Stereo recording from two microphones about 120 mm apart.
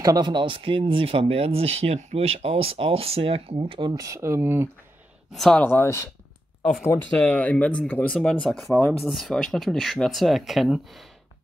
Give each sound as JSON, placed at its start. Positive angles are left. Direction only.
{"t": 0.0, "sound": "speech", "side_deg": -35}
{"t": 3.9, "sound": "speech", "side_deg": -25}
{"t": 5.3, "sound": "speech", "side_deg": 5}
{"t": 5.6, "sound": "speech", "side_deg": 20}